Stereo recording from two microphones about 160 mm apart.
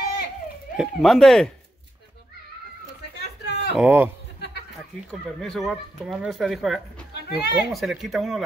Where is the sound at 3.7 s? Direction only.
10° right (ahead or behind).